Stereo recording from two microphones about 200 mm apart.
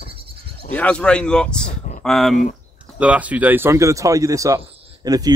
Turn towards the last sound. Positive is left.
turn(degrees=-20)  # may be behind; listen again after turning